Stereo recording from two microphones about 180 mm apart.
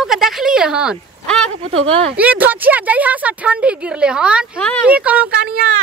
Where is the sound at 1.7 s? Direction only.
30° right (ahead or behind).